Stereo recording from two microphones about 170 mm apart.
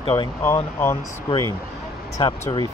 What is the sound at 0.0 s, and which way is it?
Speech, 25° left (ahead or behind).